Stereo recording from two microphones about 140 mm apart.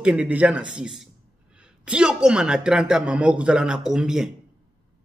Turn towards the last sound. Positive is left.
turn(degrees=-5)  # may be behind; listen again after turning